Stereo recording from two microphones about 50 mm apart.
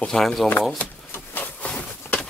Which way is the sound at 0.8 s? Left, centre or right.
Left.